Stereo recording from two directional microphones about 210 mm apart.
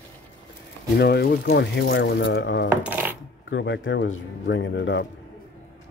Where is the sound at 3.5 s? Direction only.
60° left (ahead or behind).